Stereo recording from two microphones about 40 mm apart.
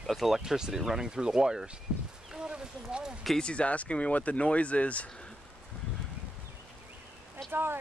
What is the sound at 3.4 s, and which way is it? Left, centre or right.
Speech, left.